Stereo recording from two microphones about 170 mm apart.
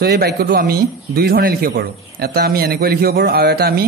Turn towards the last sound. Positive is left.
turn(degrees=-70)  # may be behind; listen again after turning